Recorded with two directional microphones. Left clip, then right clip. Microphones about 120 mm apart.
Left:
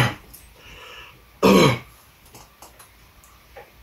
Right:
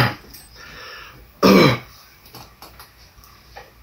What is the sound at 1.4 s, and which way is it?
Throat clearing, 15° left (ahead or behind).